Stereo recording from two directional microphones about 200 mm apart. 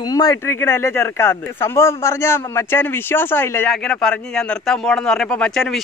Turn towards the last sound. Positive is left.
turn(degrees=0)  # may be behind; listen again after turning